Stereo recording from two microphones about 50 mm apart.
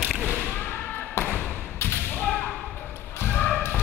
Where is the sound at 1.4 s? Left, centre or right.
Left.